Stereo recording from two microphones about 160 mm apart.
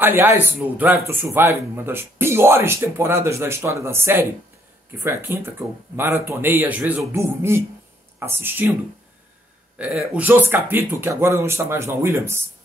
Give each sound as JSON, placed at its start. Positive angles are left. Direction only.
{"t": 0.0, "sound": "speech", "side_deg": -15}
{"t": 9.8, "sound": "speech", "side_deg": -5}